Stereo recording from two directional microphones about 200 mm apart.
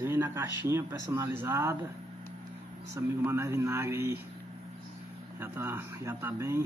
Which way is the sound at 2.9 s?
15° right (ahead or behind).